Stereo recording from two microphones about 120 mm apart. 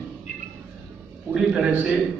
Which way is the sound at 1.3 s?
5° right (ahead or behind).